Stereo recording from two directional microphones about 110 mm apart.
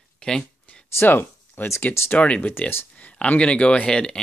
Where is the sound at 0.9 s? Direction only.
20° left (ahead or behind).